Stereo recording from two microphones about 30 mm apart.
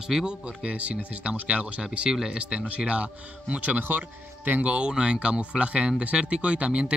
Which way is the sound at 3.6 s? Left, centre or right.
Right.